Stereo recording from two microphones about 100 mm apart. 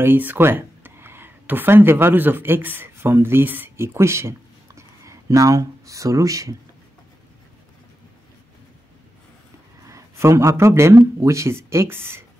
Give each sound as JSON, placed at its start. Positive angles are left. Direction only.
{"t": 0.0, "sound": "speech", "side_deg": -20}
{"t": 9.8, "sound": "speech", "side_deg": -30}